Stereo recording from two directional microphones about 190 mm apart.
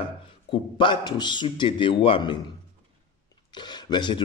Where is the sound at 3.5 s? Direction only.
25° left (ahead or behind).